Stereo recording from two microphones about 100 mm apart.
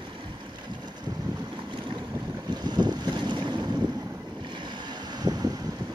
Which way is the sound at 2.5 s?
45° right (ahead or behind).